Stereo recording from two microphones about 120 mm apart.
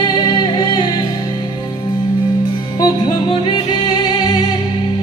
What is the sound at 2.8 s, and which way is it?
Music, 40° left (ahead or behind).